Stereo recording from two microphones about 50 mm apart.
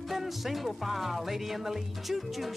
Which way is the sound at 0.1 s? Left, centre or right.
Centre.